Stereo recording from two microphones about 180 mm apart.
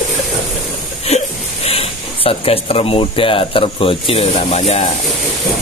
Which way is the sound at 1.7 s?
35° left (ahead or behind).